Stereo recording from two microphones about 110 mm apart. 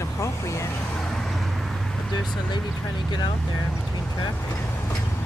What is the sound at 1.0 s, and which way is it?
Vehicle, 5° left (ahead or behind).